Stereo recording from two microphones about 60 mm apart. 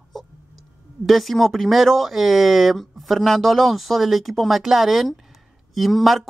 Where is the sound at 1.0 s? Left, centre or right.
Centre.